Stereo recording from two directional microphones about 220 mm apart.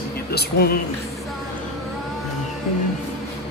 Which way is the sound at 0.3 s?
45° left (ahead or behind).